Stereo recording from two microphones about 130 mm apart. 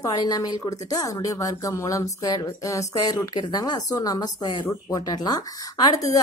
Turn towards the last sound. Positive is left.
turn(degrees=30)  # may be behind; listen again after turning